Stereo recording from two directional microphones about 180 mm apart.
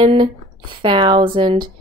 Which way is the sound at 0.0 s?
30° right (ahead or behind).